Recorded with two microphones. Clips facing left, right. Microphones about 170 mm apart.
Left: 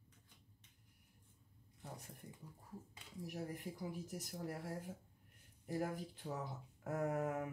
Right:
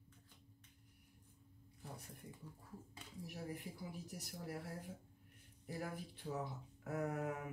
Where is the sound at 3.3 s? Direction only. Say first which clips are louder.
Left 2 dB; 45° left (ahead or behind).